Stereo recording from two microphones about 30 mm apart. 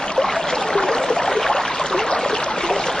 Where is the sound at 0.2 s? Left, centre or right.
Centre.